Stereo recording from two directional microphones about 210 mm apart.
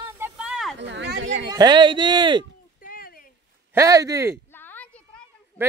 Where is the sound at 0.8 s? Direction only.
55° right (ahead or behind).